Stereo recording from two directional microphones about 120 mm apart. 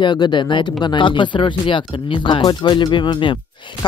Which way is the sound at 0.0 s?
40° left (ahead or behind).